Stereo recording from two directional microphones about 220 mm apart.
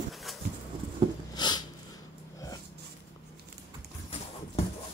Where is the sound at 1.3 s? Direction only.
20° left (ahead or behind).